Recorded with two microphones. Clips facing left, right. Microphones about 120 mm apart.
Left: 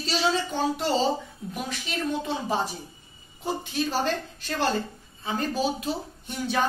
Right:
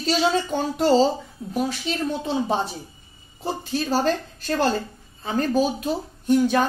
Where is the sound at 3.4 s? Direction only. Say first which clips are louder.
Right 2 dB; 40° right (ahead or behind).